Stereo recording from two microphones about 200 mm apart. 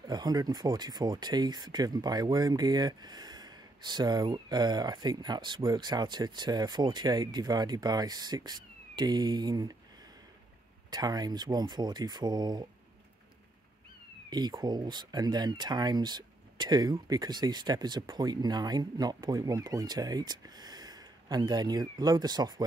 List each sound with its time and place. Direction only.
0.0 s speech: 20° right (ahead or behind)
10.9 s speech: 20° right (ahead or behind)
14.3 s speech: 20° right (ahead or behind)